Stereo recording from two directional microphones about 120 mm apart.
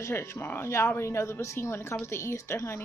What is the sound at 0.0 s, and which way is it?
A woman's voice, 20° left (ahead or behind).